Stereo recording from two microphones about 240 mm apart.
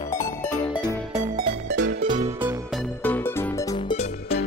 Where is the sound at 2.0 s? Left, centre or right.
Right.